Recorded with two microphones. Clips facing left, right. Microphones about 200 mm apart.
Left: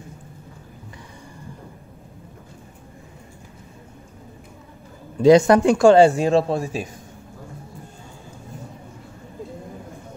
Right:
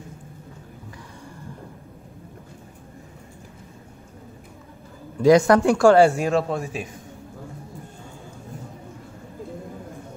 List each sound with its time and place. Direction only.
5.2 s speech: 25° left (ahead or behind)